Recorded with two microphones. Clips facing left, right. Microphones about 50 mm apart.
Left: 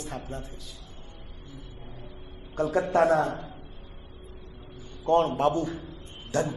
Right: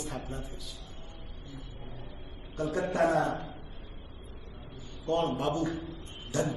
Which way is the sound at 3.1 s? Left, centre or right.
Left.